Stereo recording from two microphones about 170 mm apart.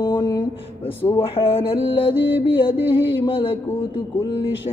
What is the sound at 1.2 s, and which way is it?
Music, 35° left (ahead or behind).